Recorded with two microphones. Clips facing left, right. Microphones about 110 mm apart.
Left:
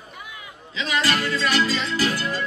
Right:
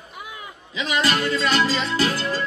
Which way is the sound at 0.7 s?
20° right (ahead or behind).